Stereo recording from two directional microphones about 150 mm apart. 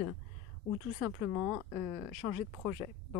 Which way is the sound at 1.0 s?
15° right (ahead or behind).